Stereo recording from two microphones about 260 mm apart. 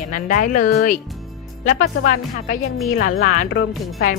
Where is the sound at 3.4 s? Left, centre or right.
Left.